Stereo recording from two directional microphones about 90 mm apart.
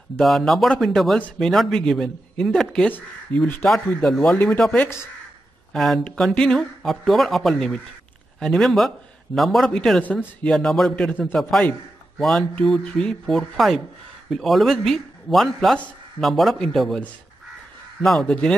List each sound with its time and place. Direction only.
0.2 s speech: centre (ahead or behind); by 3.4 s 15° left (ahead or behind)
3.6 s speech: centre (ahead or behind)
12.2 s speech: centre (ahead or behind)
18.2 s speech: 10° left (ahead or behind)